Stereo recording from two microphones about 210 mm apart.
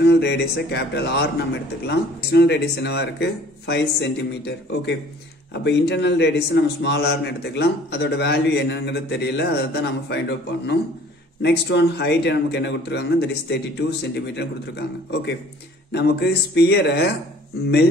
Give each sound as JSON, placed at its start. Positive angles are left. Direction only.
{"t": 0.0, "sound": "a man's voice", "side_deg": 50}